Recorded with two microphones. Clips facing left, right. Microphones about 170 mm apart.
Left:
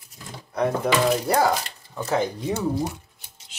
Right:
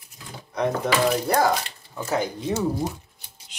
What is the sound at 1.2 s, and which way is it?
Speech, 5° left (ahead or behind).